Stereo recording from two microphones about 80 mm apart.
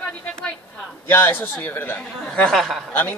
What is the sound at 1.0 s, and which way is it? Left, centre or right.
Speech, left.